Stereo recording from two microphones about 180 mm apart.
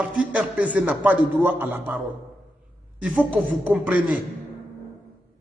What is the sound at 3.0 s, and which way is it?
A man's voice, 10° right (ahead or behind).